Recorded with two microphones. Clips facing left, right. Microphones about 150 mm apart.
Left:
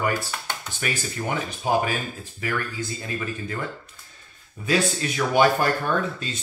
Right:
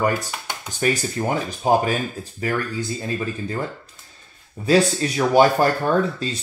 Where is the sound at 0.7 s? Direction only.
35° right (ahead or behind).